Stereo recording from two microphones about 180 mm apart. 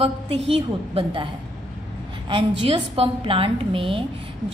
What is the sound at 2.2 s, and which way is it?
A woman's voice, 25° right (ahead or behind).